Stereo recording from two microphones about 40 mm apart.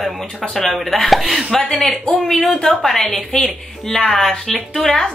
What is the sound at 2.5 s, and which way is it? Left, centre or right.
A woman's voice, centre.